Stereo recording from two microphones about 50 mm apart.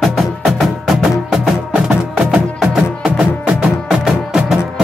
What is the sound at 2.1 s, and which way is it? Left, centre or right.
Music, centre.